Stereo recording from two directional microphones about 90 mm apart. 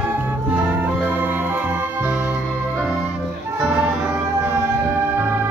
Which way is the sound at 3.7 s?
15° right (ahead or behind).